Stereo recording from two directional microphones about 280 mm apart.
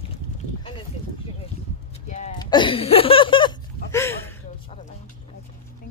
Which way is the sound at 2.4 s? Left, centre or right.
Centre.